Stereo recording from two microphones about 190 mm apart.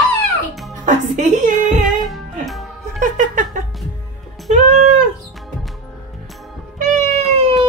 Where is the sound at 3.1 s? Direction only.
40° right (ahead or behind).